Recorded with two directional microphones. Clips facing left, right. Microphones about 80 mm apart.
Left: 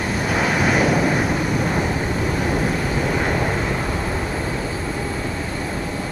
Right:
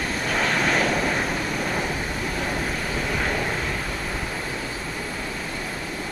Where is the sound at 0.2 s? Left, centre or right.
Centre.